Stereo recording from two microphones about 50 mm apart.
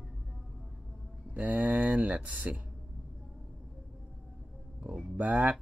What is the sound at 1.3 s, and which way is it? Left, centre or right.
Speech, right.